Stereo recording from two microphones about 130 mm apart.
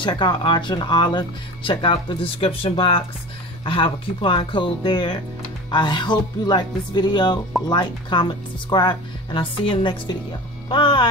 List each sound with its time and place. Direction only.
0.0 s speech: 35° left (ahead or behind)